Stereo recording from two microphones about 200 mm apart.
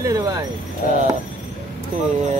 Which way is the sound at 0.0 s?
15° right (ahead or behind).